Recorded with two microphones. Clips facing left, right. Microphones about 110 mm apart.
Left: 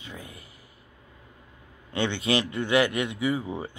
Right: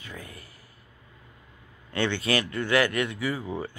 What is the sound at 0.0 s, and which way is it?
Speech, 20° left (ahead or behind).